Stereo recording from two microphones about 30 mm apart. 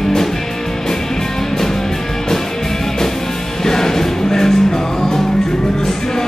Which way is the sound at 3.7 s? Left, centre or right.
Centre.